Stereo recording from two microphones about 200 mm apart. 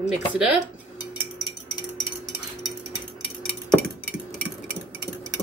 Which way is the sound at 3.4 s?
5° left (ahead or behind).